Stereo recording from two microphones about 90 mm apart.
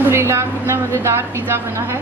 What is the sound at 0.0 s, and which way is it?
Speech, 30° right (ahead or behind).